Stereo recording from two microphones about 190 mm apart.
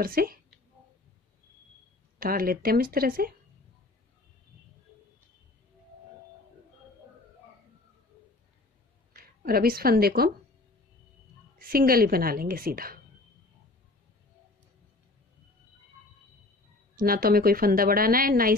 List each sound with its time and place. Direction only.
0.0 s a woman's voice: 50° right (ahead or behind)
2.1 s a woman's voice: 50° right (ahead or behind)
9.1 s a woman's voice: 50° right (ahead or behind)
11.5 s a woman's voice: 50° right (ahead or behind)
16.9 s a woman's voice: 50° right (ahead or behind)